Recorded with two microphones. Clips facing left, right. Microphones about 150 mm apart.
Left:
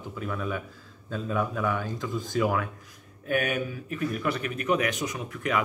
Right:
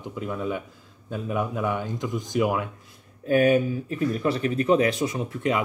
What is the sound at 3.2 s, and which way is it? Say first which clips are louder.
Speech: right 8 dB; 30° right (ahead or behind).